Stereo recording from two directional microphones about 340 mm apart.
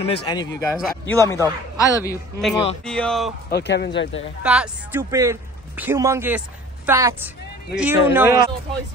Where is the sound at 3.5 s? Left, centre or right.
Left.